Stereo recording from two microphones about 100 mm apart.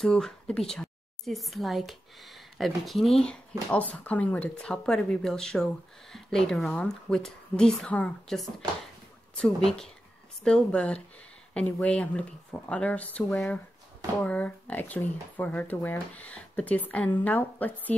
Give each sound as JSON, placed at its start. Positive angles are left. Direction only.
{"t": 0.0, "sound": "a woman's voice", "side_deg": 5}
{"t": 13.2, "sound": "speech", "side_deg": 0}
{"t": 14.2, "sound": "speech", "side_deg": 15}